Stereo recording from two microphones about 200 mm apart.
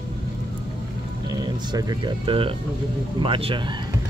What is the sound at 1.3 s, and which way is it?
Speech, 20° right (ahead or behind).